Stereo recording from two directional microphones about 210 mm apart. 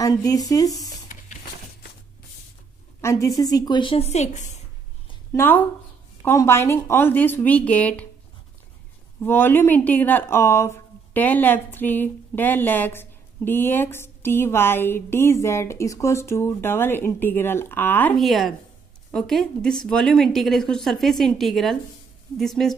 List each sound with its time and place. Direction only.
0.0 s speech: 15° left (ahead or behind)
3.0 s a woman's voice: 15° left (ahead or behind); by 4.6 s 35° left (ahead or behind)
5.3 s speech: 10° left (ahead or behind)
9.2 s a woman's voice: 10° left (ahead or behind)